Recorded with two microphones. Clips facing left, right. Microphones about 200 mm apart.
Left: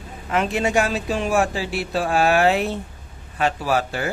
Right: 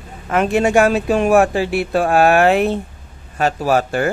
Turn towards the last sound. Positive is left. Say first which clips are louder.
# right 6 dB
turn(degrees=-50)  # may be behind; listen again after turning